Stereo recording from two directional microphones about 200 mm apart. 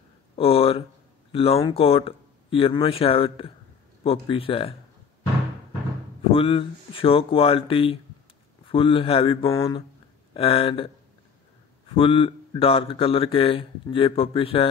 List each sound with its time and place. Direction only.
0.4 s speech: 30° left (ahead or behind)
6.3 s speech: 25° left (ahead or behind)
11.9 s speech: 25° left (ahead or behind)